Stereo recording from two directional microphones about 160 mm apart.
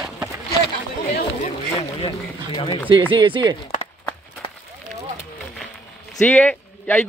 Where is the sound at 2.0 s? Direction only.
30° left (ahead or behind).